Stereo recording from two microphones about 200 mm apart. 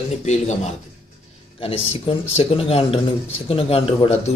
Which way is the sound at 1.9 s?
25° left (ahead or behind).